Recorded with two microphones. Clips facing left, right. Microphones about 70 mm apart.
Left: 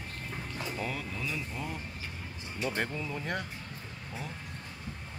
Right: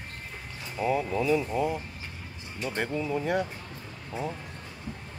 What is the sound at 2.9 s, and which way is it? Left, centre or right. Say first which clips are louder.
Speech: right 7 dB; centre.